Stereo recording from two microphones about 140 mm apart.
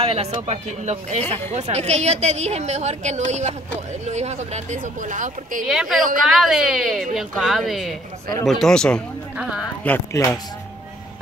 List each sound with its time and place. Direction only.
0.0 s a woman's voice: 45° right (ahead or behind); by 5.7 s 70° right (ahead or behind)
5.7 s speech: 5° right (ahead or behind)
9.4 s speech: 5° right (ahead or behind)
9.8 s speech: 20° left (ahead or behind)